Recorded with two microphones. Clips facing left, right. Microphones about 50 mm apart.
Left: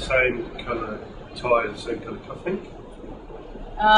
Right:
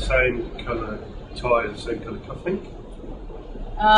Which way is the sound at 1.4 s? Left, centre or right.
Centre.